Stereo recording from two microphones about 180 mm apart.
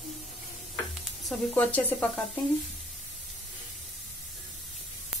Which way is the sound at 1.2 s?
10° left (ahead or behind).